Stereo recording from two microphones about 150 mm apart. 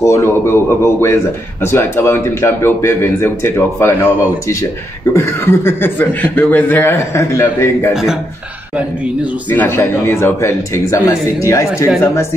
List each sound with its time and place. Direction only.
0.0 s a man's voice: 20° left (ahead or behind)
7.9 s a man's voice: 5° right (ahead or behind)
9.5 s a man's voice: 15° left (ahead or behind)